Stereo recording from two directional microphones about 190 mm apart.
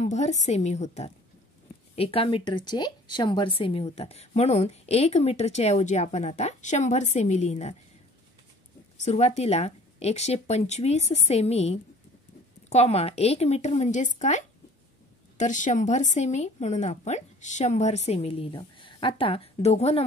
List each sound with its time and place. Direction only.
0.0 s speech: 35° left (ahead or behind)
8.9 s speech: 35° left (ahead or behind)